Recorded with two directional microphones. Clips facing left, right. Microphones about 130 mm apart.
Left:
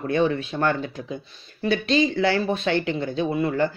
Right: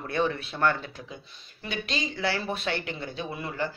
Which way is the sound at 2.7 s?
25° left (ahead or behind).